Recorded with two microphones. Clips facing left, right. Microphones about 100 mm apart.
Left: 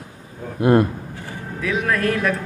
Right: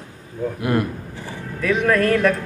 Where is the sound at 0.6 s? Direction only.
30° left (ahead or behind).